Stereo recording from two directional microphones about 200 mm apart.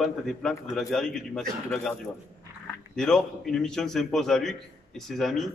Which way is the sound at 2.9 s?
5° left (ahead or behind).